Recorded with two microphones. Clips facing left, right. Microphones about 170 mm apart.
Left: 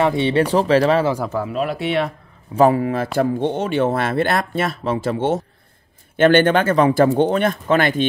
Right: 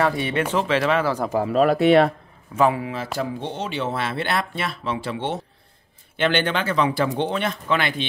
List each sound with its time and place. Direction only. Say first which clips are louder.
0.0 s speech: left 5 dB; 25° left (ahead or behind)
1.4 s speech: right 5 dB; 40° right (ahead or behind)
2.5 s speech: left 6 dB; 40° left (ahead or behind)